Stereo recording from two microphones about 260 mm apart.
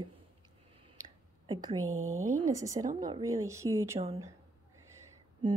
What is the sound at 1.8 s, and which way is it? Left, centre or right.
Speech, right.